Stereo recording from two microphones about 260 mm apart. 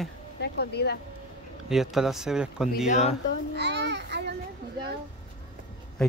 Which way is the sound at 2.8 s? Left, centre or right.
Left.